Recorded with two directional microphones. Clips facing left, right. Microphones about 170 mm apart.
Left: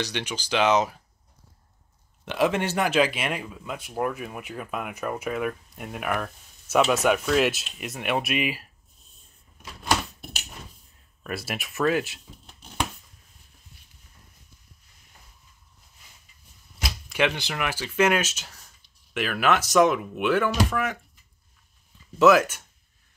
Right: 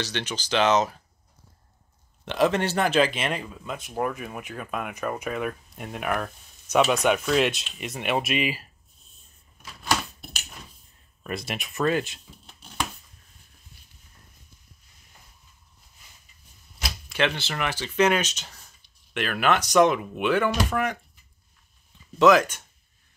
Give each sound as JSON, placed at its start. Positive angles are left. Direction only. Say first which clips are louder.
{"t": 0.0, "sound": "speech", "louder": "even", "side_deg": 15}
{"t": 2.2, "sound": "speech", "louder": "right 1 dB", "side_deg": 10}
{"t": 9.6, "sound": "typewriter", "louder": "left 1 dB", "side_deg": 15}
{"t": 11.2, "sound": "speech", "louder": "even", "side_deg": 5}
{"t": 12.3, "sound": "a sound", "louder": "left 1 dB", "side_deg": 15}
{"t": 17.1, "sound": "speech", "louder": "left 1 dB", "side_deg": 10}
{"t": 22.2, "sound": "speech", "louder": "even", "side_deg": 5}